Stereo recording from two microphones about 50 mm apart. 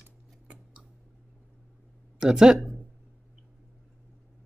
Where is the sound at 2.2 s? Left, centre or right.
Centre.